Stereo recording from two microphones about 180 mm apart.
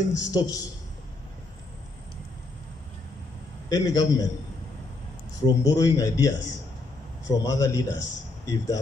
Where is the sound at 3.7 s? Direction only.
20° left (ahead or behind).